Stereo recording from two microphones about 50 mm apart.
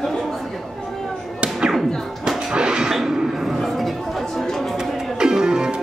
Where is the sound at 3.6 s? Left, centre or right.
Centre.